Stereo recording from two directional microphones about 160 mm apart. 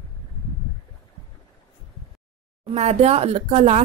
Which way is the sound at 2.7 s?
40° right (ahead or behind).